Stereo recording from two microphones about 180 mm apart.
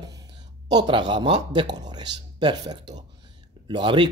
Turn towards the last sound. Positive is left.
turn(degrees=-25)  # may be behind; listen again after turning